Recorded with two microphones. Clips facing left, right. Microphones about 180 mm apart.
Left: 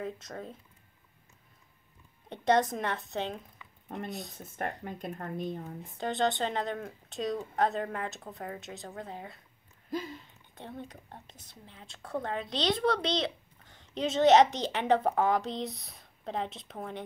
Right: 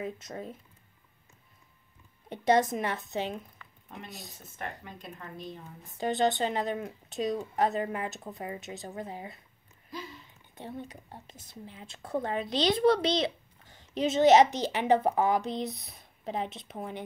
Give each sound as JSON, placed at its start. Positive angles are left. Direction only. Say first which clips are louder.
{"t": 0.0, "sound": "speech", "louder": "right 1 dB", "side_deg": -10}
{"t": 2.2, "sound": "speech", "louder": "right 1 dB", "side_deg": -5}
{"t": 3.9, "sound": "speech", "louder": "left 7 dB", "side_deg": 50}
{"t": 5.9, "sound": "speech", "louder": "right 3 dB", "side_deg": -5}
{"t": 9.8, "sound": "a sound", "louder": "left 6 dB", "side_deg": 50}
{"t": 10.5, "sound": "a woman's voice", "louder": "right 2 dB", "side_deg": -5}